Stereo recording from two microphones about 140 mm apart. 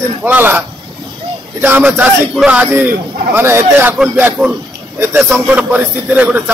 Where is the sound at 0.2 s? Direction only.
15° right (ahead or behind).